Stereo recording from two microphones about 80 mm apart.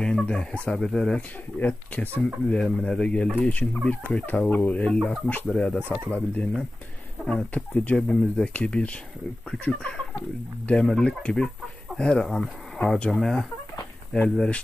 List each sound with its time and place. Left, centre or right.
0.0 s speech: centre
1.6 s speech: centre
10.7 s speech: centre